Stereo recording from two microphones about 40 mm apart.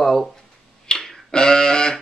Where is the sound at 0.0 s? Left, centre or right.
Centre.